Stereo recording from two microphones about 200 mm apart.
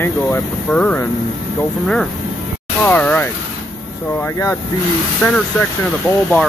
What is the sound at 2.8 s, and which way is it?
Speech, 10° left (ahead or behind).